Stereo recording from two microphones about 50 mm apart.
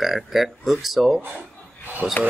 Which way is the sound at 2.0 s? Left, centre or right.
Centre.